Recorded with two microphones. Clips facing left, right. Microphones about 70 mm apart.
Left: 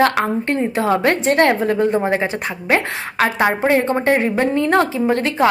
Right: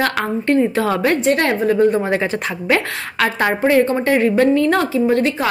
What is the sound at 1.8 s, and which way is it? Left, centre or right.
A woman's voice, left.